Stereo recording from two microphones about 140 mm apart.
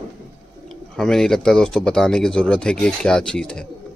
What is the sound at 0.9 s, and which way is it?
Speech, 5° left (ahead or behind).